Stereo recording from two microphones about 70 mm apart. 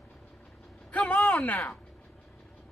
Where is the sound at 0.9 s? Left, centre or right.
Left.